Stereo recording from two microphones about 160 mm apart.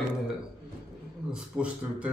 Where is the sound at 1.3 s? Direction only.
5° right (ahead or behind).